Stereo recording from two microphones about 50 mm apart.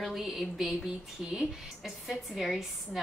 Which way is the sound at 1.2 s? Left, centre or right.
Centre.